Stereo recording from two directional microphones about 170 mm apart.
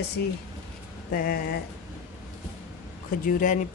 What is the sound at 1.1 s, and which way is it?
Speech, 60° left (ahead or behind).